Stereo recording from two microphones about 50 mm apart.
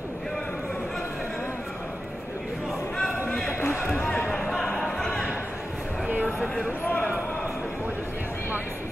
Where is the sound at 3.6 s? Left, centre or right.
Left.